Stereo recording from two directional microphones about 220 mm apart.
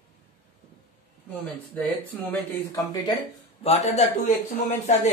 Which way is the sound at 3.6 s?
30° left (ahead or behind).